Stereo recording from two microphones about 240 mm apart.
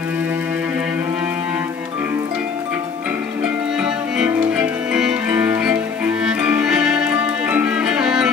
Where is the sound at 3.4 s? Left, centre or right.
Centre.